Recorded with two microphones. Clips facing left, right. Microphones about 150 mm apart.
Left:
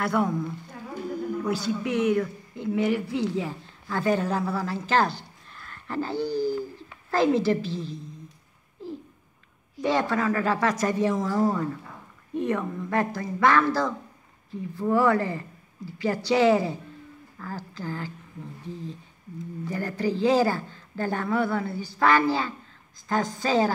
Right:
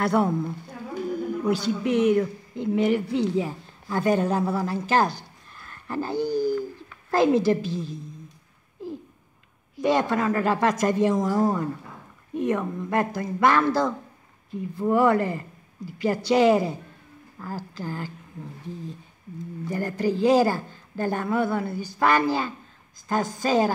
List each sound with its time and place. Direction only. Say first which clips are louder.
0.0 s a woman's voice: right 3 dB; 35° right (ahead or behind)
1.4 s speech: right 4 dB; 20° right (ahead or behind)
9.8 s a woman's voice: right 2 dB; 15° right (ahead or behind)
19.7 s speech: right 2 dB; 15° right (ahead or behind)